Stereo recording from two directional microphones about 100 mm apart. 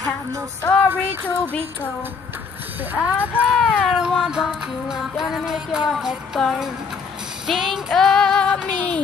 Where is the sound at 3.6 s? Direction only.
5° right (ahead or behind).